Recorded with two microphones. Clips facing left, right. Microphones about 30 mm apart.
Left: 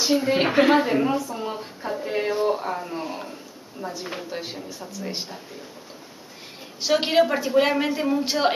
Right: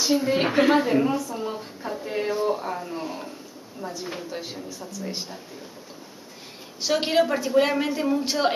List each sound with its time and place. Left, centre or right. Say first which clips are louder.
0.0 s speech: left 1 dB; centre
6.8 s speech: left 2 dB; centre